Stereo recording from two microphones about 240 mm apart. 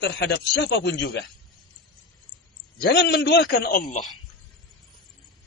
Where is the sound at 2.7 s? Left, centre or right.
Left.